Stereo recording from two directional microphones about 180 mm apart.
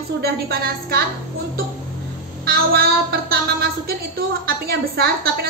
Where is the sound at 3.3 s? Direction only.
60° right (ahead or behind).